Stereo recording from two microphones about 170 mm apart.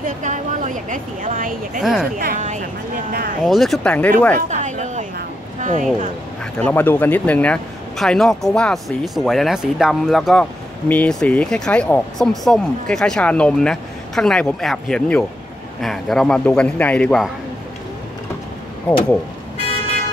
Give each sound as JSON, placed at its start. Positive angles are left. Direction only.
{"t": 0.0, "sound": "a woman's voice", "side_deg": -50}
{"t": 1.8, "sound": "speech", "side_deg": 0}
{"t": 2.1, "sound": "speech", "side_deg": -55}
{"t": 3.4, "sound": "speech", "side_deg": 0}
{"t": 4.4, "sound": "a sound", "side_deg": -45}
{"t": 5.6, "sound": "speech", "side_deg": -50}
{"t": 6.6, "sound": "speech", "side_deg": 10}
{"t": 18.9, "sound": "speech", "side_deg": 5}